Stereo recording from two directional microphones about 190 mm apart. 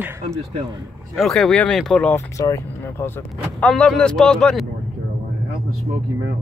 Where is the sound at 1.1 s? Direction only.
Centre (ahead or behind).